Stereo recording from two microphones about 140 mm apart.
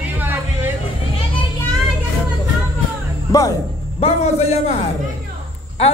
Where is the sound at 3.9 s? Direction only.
50° left (ahead or behind).